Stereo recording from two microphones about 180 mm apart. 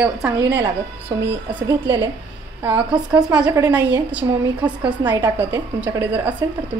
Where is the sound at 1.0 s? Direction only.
25° right (ahead or behind).